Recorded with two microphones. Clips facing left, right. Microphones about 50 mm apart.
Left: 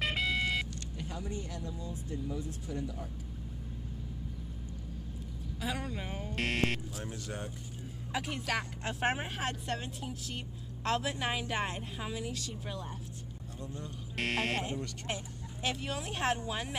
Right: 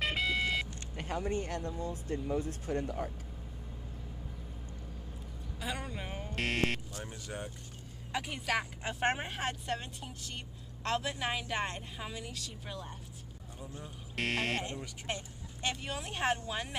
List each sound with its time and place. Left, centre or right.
0.0 s vehicle: centre
0.9 s speech: right
5.6 s speech: centre
14.1 s speech: centre